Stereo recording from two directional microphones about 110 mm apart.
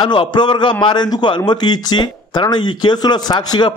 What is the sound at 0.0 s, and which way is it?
A man's voice, 45° left (ahead or behind).